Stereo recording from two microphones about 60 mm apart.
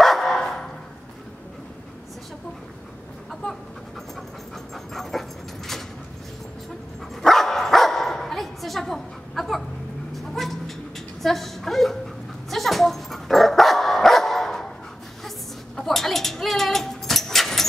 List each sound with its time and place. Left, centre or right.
0.0 s dog: centre
4.7 s dog: centre
7.2 s dog: centre
10.1 s a sound: centre
12.4 s dog: centre
15.2 s a sound: centre